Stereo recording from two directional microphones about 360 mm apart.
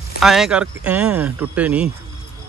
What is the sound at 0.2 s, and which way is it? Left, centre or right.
Speech, centre.